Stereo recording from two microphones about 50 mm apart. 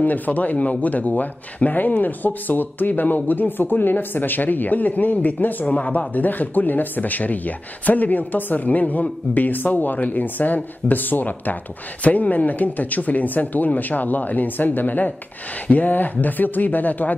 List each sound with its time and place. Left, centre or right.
0.0 s speech: left